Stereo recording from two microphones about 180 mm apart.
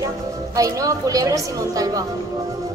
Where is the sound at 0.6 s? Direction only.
20° right (ahead or behind).